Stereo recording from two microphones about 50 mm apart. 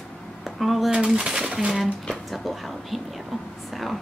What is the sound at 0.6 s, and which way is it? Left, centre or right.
Speech, centre.